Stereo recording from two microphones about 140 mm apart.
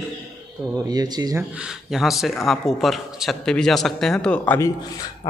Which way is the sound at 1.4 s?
5° right (ahead or behind).